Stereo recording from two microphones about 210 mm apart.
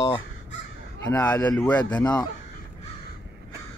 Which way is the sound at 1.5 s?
5° left (ahead or behind).